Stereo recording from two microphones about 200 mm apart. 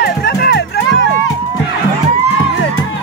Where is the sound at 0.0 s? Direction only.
55° left (ahead or behind).